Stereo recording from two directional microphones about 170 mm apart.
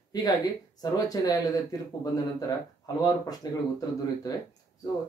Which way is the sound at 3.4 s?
20° left (ahead or behind).